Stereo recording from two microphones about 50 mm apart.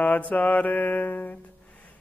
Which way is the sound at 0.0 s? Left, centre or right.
Left.